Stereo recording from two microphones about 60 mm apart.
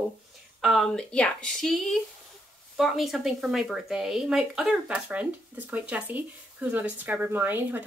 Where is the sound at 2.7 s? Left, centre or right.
Centre.